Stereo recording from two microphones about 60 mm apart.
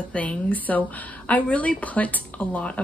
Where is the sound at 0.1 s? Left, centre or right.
Left.